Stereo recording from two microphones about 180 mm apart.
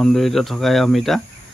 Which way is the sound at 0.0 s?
Centre (ahead or behind).